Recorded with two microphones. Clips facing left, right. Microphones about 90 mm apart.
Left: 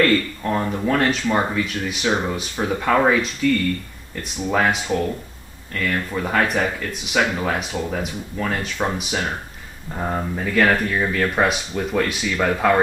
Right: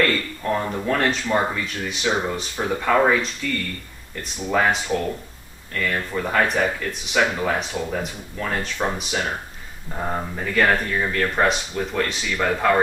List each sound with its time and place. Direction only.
0.0 s speech: 5° left (ahead or behind)
4.5 s speech: 5° left (ahead or behind)